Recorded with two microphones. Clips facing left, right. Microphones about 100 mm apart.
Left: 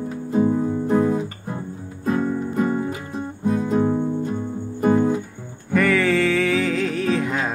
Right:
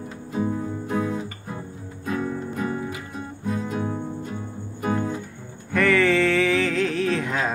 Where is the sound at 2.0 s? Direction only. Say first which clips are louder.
Left 5 dB; 35° left (ahead or behind).